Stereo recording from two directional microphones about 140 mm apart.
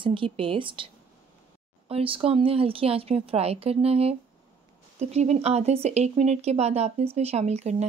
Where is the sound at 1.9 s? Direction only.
40° right (ahead or behind).